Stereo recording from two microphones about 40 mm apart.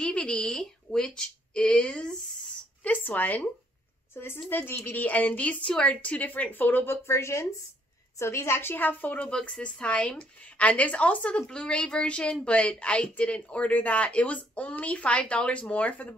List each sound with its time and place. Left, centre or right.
0.1 s speech: left
0.5 s speech: centre
2.8 s speech: left
4.1 s a woman's voice: left
4.5 s a woman's voice: left
4.9 s speech: left
5.5 s speech: left
8.5 s a woman's voice: left
9.6 s speech: left
11.4 s speech: left